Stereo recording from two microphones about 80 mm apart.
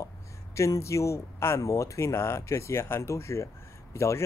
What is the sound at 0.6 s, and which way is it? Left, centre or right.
Speech, left.